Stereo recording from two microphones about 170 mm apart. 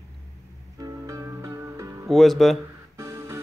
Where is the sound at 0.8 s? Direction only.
20° right (ahead or behind).